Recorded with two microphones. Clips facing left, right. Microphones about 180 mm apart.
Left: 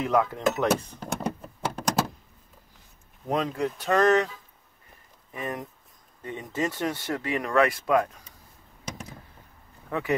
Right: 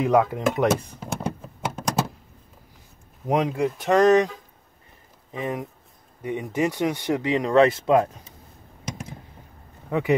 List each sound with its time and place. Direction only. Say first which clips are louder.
0.0 s speech: right 4 dB; 15° right (ahead or behind)
0.7 s a sound: right 2 dB; centre (ahead or behind)
3.3 s speech: right 4 dB; 15° right (ahead or behind)
5.3 s speech: right 4 dB; 15° right (ahead or behind)
9.8 s speech: right 6 dB; 15° right (ahead or behind)